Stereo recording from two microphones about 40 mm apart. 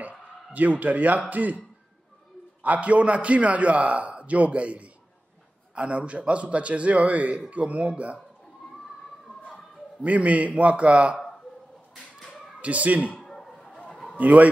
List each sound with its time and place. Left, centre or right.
0.5 s a man's voice: right
2.6 s a man's voice: right
10.0 s a man's voice: right
12.6 s a man's voice: right
13.2 s a sound: centre
13.7 s a sound: left
14.1 s a man's voice: right